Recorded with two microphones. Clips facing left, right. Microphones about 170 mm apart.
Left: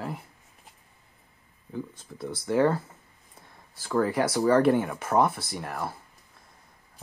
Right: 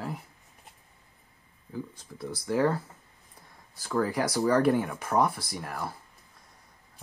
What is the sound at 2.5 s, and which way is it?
Speech, 5° left (ahead or behind).